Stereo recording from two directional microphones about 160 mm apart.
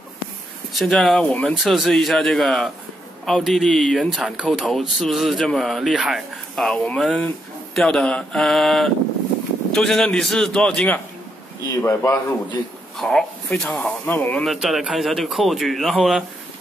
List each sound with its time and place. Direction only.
0.7 s speech: centre (ahead or behind)
11.8 s speech: 15° left (ahead or behind)
13.0 s speech: centre (ahead or behind)
14.4 s speech: centre (ahead or behind)